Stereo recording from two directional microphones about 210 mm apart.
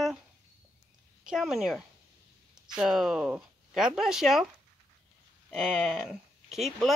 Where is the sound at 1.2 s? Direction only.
Centre (ahead or behind).